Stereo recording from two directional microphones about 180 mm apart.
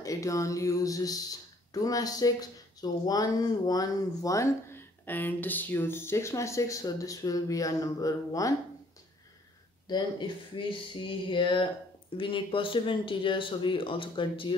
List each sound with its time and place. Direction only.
0.0 s speech: 20° left (ahead or behind)
9.8 s speech: 25° left (ahead or behind)